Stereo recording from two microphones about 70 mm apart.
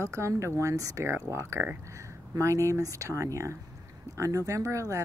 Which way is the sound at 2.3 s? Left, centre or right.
Right.